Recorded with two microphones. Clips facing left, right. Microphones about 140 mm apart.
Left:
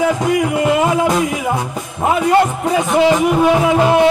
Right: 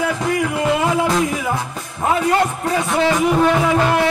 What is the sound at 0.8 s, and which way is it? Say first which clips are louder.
Music: left 3 dB; 15° left (ahead or behind).